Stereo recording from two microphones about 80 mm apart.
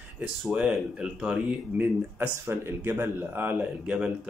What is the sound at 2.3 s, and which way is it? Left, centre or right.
Speech, right.